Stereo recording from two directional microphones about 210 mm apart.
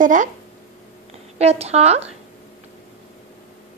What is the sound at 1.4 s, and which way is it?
Speech, 30° right (ahead or behind).